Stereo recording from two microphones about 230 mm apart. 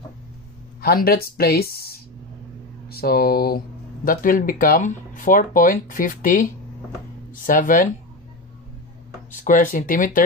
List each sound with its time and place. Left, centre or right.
0.7 s speech: left
7.4 s speech: left
9.4 s speech: left